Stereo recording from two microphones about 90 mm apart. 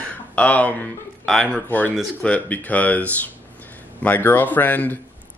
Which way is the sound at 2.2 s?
15° left (ahead or behind).